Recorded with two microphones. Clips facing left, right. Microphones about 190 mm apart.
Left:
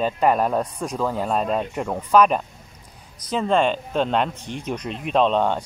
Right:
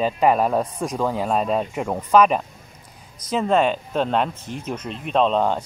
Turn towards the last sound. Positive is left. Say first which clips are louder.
# even
turn(degrees=-5)  # may be behind; listen again after turning